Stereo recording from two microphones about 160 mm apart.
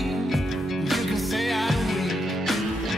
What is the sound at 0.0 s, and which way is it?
Music, centre (ahead or behind).